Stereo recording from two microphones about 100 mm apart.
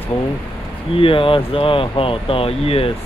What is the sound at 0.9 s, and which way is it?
Speech, 60° left (ahead or behind).